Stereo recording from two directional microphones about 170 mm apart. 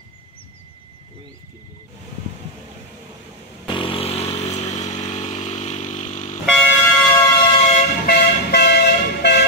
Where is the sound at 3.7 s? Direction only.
30° left (ahead or behind).